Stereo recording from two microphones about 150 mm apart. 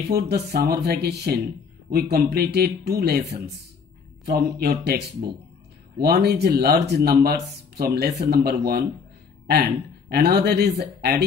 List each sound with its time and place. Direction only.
0.1 s a man's voice: 90° right